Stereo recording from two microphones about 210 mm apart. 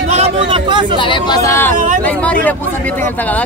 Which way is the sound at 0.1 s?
30° right (ahead or behind).